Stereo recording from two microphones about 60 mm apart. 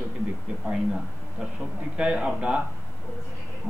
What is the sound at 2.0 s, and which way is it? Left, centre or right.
Speech, centre.